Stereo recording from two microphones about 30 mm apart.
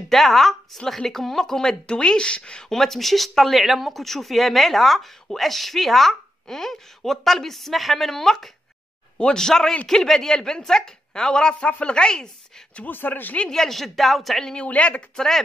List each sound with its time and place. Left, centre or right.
0.1 s a woman's voice: centre
1.9 s speech: left
2.7 s speech: centre
4.0 s a woman's voice: centre
9.2 s a woman's voice: left
12.8 s speech: left
13.5 s a woman's voice: centre
13.7 s speech: centre
14.8 s speech: left
15.1 s a woman's voice: centre